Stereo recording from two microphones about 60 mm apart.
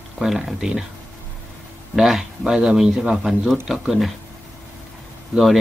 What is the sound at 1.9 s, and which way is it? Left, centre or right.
Speech, centre.